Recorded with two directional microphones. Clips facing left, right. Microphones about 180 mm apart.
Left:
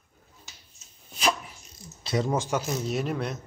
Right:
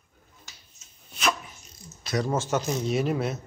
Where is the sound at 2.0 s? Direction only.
25° left (ahead or behind).